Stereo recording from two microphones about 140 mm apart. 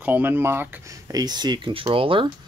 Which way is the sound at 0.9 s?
25° right (ahead or behind).